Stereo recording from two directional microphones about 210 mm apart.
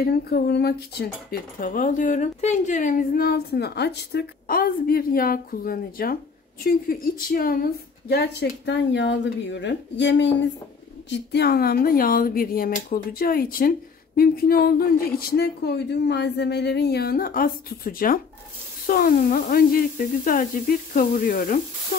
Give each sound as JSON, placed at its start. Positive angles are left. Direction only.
{"t": 0.0, "sound": "speech", "side_deg": 50}